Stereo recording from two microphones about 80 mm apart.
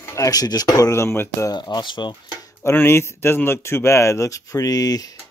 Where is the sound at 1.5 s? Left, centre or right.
Left.